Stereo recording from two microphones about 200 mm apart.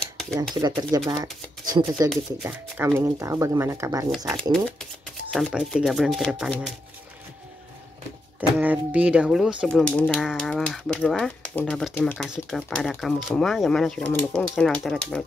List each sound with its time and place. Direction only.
0.6 s speech: 20° right (ahead or behind)
2.4 s speech: 10° right (ahead or behind)
4.3 s speech: 5° left (ahead or behind)
8.4 s speech: 5° right (ahead or behind)